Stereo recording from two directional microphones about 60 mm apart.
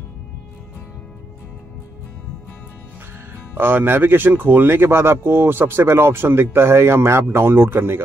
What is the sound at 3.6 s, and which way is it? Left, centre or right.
Speech, right.